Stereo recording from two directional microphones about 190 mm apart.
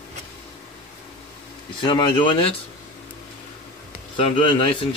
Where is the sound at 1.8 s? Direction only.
25° left (ahead or behind).